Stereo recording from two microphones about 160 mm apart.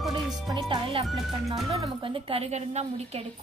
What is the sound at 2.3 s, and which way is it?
Speech, 45° right (ahead or behind).